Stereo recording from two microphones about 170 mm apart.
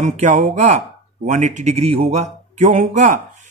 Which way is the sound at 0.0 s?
45° right (ahead or behind).